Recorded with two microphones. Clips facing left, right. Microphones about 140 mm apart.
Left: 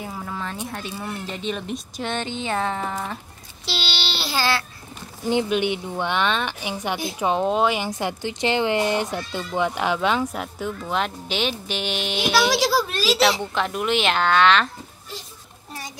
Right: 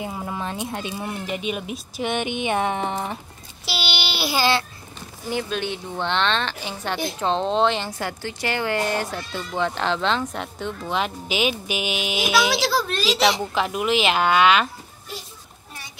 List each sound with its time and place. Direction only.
0.0 s speech: 20° right (ahead or behind)
3.6 s child singing: 10° right (ahead or behind)
5.3 s a woman's voice: 20° left (ahead or behind); by 12.5 s 5° right (ahead or behind)
12.5 s speech: 5° left (ahead or behind); by 15.2 s 10° right (ahead or behind)